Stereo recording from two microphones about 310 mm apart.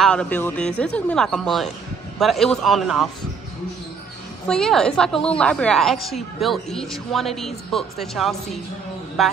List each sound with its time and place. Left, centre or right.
0.0 s speech: centre
4.5 s speech: centre